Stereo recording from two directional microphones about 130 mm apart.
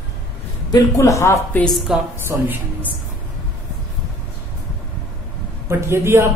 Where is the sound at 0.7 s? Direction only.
25° left (ahead or behind).